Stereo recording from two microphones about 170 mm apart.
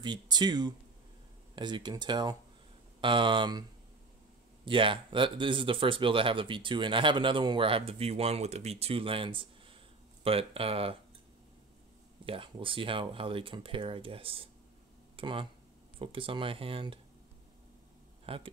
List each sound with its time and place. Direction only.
0.0 s speech: 25° right (ahead or behind)
4.6 s speech: 30° right (ahead or behind)
12.3 s speech: 30° right (ahead or behind)
18.2 s speech: 35° right (ahead or behind)